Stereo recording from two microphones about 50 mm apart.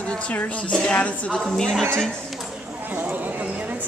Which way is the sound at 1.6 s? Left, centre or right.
Centre.